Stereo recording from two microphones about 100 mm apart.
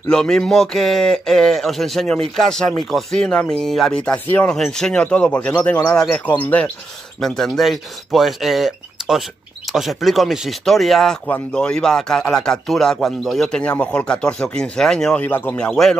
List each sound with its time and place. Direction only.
0.1 s a man's voice: 5° left (ahead or behind)
7.2 s a man's voice: 5° left (ahead or behind)
15.2 s a man's voice: 20° left (ahead or behind)
15.5 s a man's voice: 10° left (ahead or behind)